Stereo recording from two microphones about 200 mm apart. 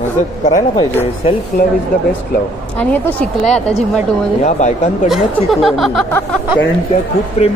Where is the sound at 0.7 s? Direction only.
25° left (ahead or behind).